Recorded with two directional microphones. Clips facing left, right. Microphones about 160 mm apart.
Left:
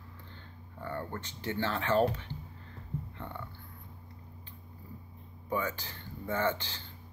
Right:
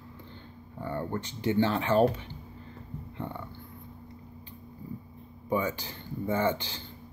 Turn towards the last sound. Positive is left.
turn(degrees=-15)  # may be behind; listen again after turning